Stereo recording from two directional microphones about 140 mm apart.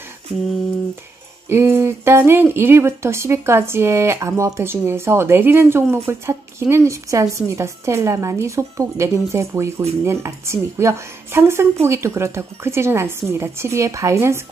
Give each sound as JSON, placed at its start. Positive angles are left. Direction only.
{"t": 1.5, "sound": "a woman's voice", "side_deg": -15}